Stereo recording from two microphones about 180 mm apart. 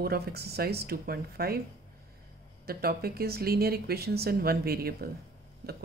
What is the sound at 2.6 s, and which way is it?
Speech, 60° right (ahead or behind).